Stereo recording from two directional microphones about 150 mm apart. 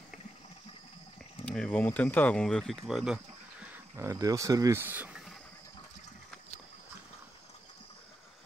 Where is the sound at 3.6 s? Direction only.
20° right (ahead or behind).